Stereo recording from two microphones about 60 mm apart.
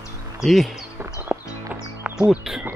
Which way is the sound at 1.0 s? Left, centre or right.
Right.